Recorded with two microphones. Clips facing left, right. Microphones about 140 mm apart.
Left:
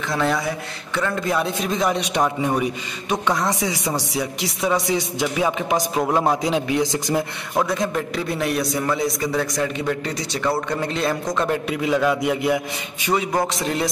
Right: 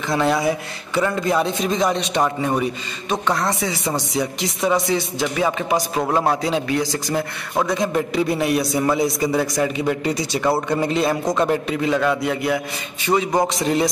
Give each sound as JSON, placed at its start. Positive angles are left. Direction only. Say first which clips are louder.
{"t": 0.1, "sound": "a man's voice", "louder": "right 4 dB", "side_deg": -5}
{"t": 6.4, "sound": "a man's voice", "louder": "even", "side_deg": 15}
{"t": 7.5, "sound": "a man's voice", "louder": "right 2 dB", "side_deg": 0}
{"t": 13.5, "sound": "a man's voice", "louder": "right 4 dB", "side_deg": 0}